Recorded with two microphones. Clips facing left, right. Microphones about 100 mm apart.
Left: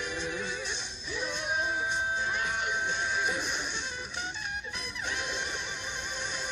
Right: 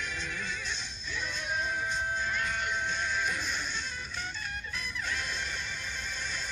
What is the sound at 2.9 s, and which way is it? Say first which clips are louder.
Music: left 2 dB; 55° left (ahead or behind).